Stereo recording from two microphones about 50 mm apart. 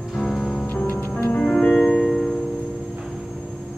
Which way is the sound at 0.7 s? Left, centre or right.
Left.